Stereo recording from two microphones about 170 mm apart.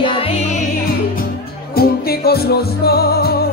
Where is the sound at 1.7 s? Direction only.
65° left (ahead or behind).